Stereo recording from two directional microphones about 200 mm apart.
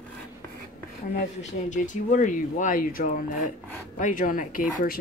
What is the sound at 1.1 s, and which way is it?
Speech, 40° left (ahead or behind).